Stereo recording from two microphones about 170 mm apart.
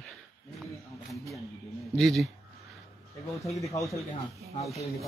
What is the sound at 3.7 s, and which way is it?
Speech, 20° left (ahead or behind).